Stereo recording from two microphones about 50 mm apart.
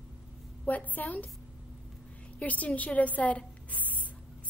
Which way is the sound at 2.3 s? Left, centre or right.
Left.